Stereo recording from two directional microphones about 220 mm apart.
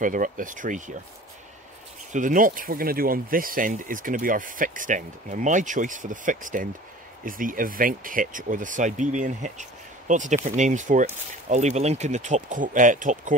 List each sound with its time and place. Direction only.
0.0 s speech: 35° right (ahead or behind)
2.1 s speech: 35° right (ahead or behind)